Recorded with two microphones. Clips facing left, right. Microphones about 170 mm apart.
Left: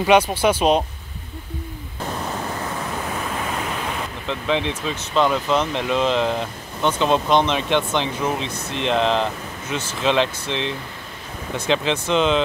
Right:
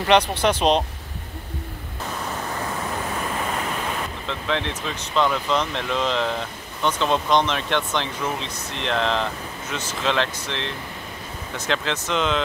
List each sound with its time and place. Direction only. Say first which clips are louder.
0.4 s speech: left 2 dB; 5° left (ahead or behind)
4.3 s speech: left 5 dB; 15° left (ahead or behind)